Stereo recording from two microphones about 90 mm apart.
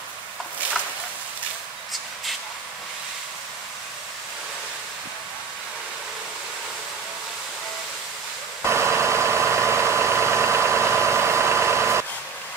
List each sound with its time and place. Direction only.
8.6 s vehicle: 30° right (ahead or behind)